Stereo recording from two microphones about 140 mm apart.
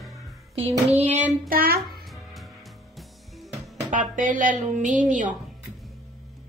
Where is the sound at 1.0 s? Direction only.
55° right (ahead or behind).